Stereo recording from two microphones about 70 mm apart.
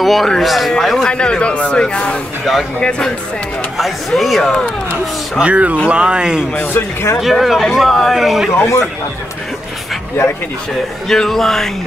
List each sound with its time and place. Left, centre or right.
0.0 s a man's voice: centre
3.7 s speech: centre
5.4 s speech: centre
6.5 s a man's voice: left
7.2 s speech: centre
11.1 s speech: centre